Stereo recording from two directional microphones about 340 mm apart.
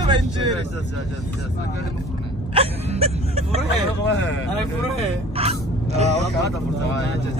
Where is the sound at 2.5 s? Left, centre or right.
Centre.